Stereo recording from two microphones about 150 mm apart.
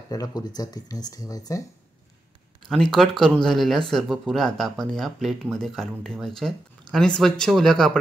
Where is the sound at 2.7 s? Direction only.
5° left (ahead or behind).